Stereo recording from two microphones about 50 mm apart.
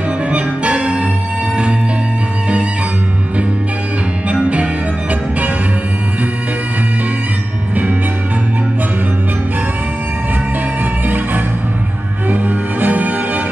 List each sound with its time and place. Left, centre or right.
0.3 s music: right
4.3 s music: right
12.3 s music: right